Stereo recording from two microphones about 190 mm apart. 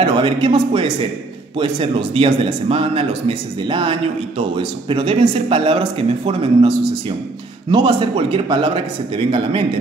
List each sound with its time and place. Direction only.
0.0 s speech: 25° right (ahead or behind)
7.7 s speech: 25° right (ahead or behind)